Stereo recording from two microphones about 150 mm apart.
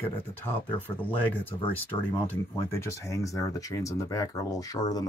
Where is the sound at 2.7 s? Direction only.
20° left (ahead or behind).